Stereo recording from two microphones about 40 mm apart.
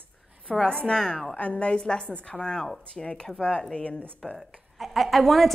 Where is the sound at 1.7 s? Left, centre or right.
Centre.